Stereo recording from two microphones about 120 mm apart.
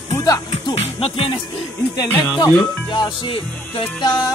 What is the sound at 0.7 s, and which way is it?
Speech, 50° left (ahead or behind).